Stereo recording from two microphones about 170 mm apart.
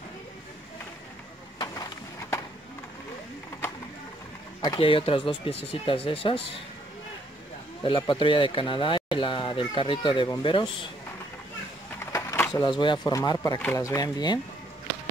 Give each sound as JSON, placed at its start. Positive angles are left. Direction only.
{"t": 4.6, "sound": "speech", "side_deg": 25}
{"t": 7.8, "sound": "speech", "side_deg": 30}
{"t": 12.0, "sound": "speech", "side_deg": 15}